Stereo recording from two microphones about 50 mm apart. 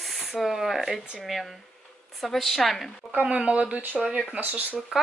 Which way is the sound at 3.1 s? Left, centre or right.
Right.